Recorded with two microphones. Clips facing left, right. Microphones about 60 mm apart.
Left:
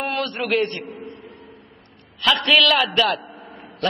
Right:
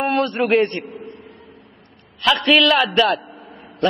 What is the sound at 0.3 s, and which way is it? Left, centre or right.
Speech, right.